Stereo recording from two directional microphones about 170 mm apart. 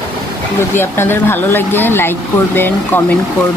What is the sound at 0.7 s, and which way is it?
Speech, 15° left (ahead or behind).